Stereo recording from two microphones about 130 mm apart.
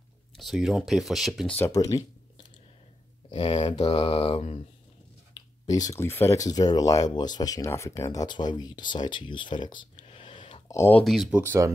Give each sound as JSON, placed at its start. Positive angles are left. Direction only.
{"t": 0.4, "sound": "speech", "side_deg": 0}
{"t": 1.7, "sound": "speech", "side_deg": 25}
{"t": 3.3, "sound": "speech", "side_deg": 40}
{"t": 3.8, "sound": "mantra", "side_deg": 45}
{"t": 5.7, "sound": "speech", "side_deg": 25}
{"t": 10.3, "sound": "a sound", "side_deg": 40}
{"t": 10.7, "sound": "speech", "side_deg": 20}
{"t": 11.0, "sound": "speech", "side_deg": 0}
{"t": 11.4, "sound": "speech", "side_deg": -20}